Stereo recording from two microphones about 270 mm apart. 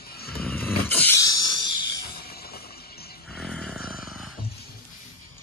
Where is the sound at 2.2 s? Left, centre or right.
Left.